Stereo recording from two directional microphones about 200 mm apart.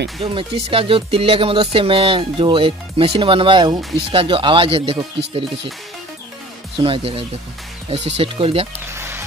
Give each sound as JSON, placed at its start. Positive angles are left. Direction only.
{"t": 0.2, "sound": "speech", "side_deg": -30}
{"t": 6.8, "sound": "speech", "side_deg": -25}
{"t": 8.7, "sound": "music", "side_deg": -10}